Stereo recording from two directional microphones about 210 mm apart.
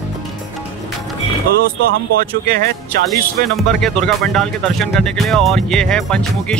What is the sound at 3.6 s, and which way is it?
Speech, centre (ahead or behind).